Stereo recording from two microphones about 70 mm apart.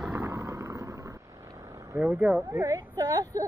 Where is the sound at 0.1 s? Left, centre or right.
Right.